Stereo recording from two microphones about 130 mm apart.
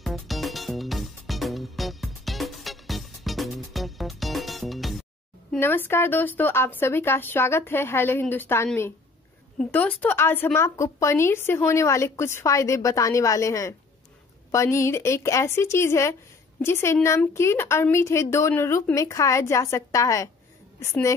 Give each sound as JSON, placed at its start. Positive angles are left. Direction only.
{"t": 0.0, "sound": "music", "side_deg": 0}
{"t": 5.6, "sound": "speech", "side_deg": 15}
{"t": 9.7, "sound": "speech", "side_deg": 10}